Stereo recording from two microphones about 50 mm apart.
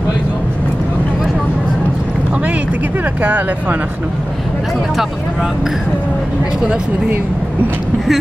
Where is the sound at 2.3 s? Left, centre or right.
Right.